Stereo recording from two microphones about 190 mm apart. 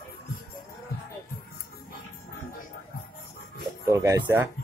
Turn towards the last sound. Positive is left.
turn(degrees=-10)  # may be behind; listen again after turning